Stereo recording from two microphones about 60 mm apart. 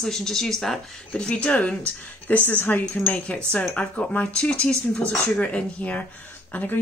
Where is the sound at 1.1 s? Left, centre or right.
Centre.